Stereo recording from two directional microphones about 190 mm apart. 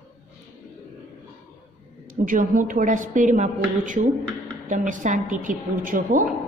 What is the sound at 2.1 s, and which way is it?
A woman's voice, 45° right (ahead or behind).